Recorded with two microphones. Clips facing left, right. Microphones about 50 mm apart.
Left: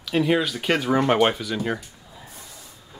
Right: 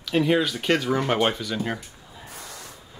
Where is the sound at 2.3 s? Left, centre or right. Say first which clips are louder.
Right 4 dB; right.